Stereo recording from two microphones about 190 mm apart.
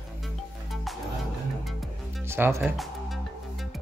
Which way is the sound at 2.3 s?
10° right (ahead or behind).